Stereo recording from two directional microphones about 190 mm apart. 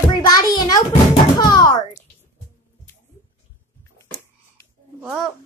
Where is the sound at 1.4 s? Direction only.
20° left (ahead or behind).